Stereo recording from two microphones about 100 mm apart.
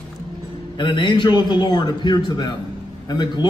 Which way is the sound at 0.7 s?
50° left (ahead or behind).